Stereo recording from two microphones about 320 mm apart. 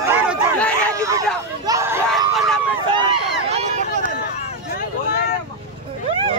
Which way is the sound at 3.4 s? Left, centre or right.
Centre.